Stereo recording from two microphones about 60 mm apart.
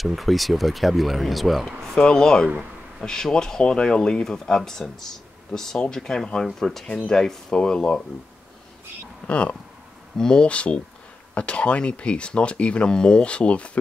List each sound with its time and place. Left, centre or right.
0.0 s speech: centre
2.0 s speech: centre
9.3 s speech: left